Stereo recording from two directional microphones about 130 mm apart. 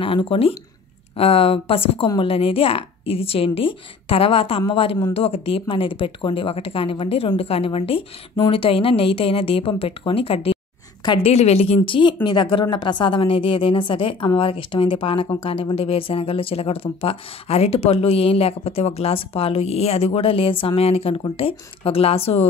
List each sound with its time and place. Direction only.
0.0 s speech: 45° left (ahead or behind)